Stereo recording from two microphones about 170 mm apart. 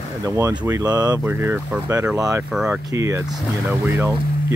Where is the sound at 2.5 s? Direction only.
5° right (ahead or behind).